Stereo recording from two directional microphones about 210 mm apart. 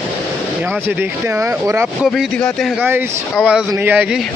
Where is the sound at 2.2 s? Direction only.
5° left (ahead or behind).